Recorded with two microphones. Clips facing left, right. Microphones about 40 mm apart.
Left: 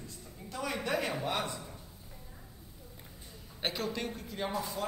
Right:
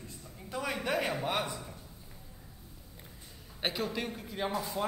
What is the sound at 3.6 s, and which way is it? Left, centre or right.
Speech, centre.